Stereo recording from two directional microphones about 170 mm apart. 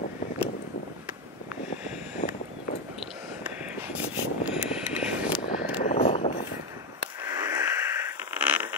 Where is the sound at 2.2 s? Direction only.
40° left (ahead or behind).